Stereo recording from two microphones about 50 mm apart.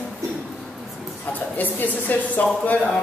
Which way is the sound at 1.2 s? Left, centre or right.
Left.